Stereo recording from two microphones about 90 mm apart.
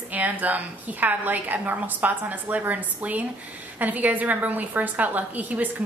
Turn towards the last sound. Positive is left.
turn(degrees=-20)  # may be behind; listen again after turning